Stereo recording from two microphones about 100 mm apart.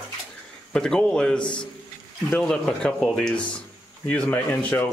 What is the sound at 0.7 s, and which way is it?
A man's voice, 5° left (ahead or behind).